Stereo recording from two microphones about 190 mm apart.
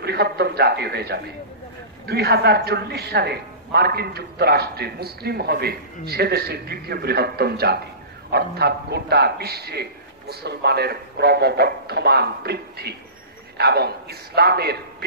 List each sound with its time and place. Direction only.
0.0 s a man's voice: 60° right (ahead or behind)